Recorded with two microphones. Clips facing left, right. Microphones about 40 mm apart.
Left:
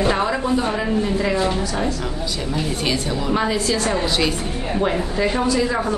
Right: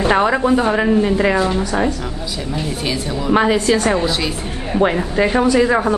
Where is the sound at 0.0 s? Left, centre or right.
Right.